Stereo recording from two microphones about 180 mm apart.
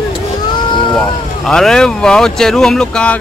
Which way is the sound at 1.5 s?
5° left (ahead or behind).